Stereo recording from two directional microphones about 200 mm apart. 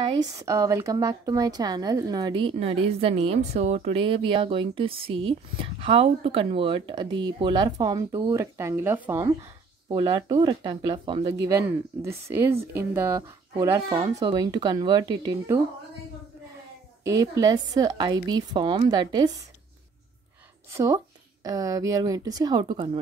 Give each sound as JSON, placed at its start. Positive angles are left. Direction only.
{"t": 0.3, "sound": "a woman's voice", "side_deg": -15}
{"t": 9.8, "sound": "a woman's voice", "side_deg": -20}
{"t": 11.4, "sound": "a woman's voice", "side_deg": -15}
{"t": 17.0, "sound": "a woman's voice", "side_deg": -15}
{"t": 20.7, "sound": "a woman's voice", "side_deg": -15}